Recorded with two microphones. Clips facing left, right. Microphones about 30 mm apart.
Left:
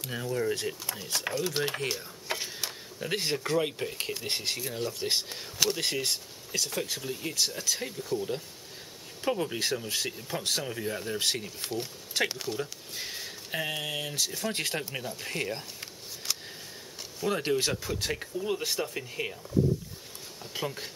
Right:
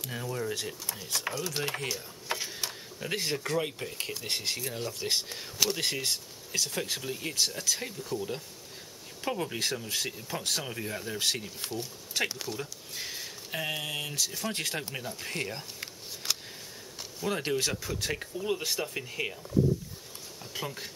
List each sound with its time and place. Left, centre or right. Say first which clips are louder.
0.0 s speech: left 4 dB; centre
1.6 s mechanisms: left 2 dB; centre
3.4 s speech: left 3 dB; centre
7.4 s speech: even; centre
16.2 s a sound: right 2 dB; centre
17.2 s speech: left 2 dB; centre
17.6 s speech: left 2 dB; centre
18.1 s speech: even; centre
20.5 s speech: left 3 dB; centre